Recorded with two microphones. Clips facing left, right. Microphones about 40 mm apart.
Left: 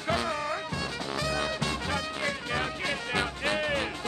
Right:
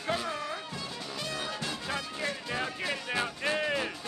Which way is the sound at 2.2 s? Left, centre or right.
Left.